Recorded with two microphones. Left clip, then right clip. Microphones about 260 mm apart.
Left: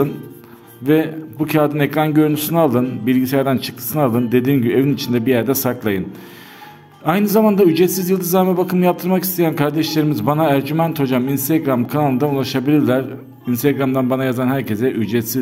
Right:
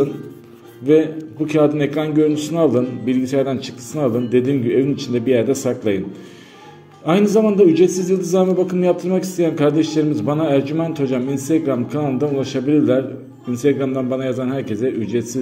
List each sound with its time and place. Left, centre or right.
0.8 s a man's voice: left
7.1 s a man's voice: left